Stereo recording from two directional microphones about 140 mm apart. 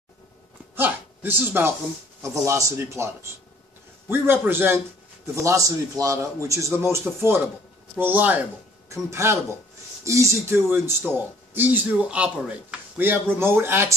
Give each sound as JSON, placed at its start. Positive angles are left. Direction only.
{"t": 0.7, "sound": "a man's voice", "side_deg": -15}